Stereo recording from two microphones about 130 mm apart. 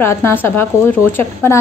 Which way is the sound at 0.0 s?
15° left (ahead or behind).